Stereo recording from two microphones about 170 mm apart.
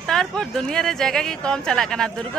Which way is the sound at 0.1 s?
5° left (ahead or behind).